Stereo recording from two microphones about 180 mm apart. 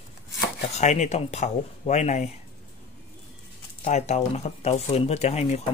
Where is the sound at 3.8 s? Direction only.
40° left (ahead or behind).